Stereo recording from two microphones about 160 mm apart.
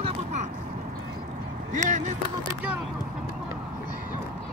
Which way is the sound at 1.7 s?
50° right (ahead or behind).